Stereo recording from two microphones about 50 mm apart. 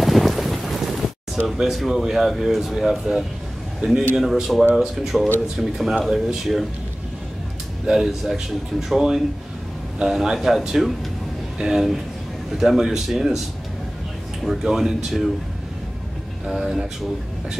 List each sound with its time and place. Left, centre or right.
0.0 s boat: centre
1.6 s speech: centre
3.8 s a man's voice: right
4.2 s speech: centre
7.8 s speech: centre
14.4 s speech: centre
16.4 s speech: centre